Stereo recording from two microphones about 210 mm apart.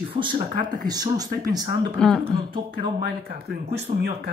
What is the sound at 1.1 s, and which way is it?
Speech, 20° right (ahead or behind).